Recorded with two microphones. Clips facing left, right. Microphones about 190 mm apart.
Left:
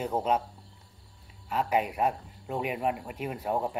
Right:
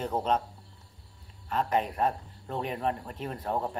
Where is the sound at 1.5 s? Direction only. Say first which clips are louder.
Left 1 dB; 10° left (ahead or behind).